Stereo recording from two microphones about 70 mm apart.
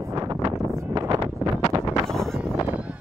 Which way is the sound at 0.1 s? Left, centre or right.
Right.